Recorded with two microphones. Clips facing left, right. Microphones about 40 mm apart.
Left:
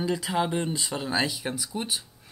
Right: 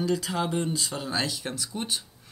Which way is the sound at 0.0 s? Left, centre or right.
Centre.